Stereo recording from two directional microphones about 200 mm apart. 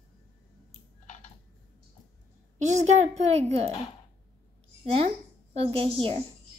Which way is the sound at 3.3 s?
30° right (ahead or behind).